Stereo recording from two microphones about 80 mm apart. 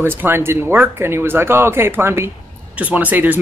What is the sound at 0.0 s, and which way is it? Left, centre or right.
Speech, right.